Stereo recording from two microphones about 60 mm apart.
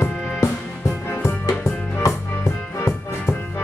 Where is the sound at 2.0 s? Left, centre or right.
Left.